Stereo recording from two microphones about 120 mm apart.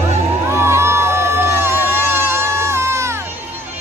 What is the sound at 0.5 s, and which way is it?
Crowd, 20° right (ahead or behind).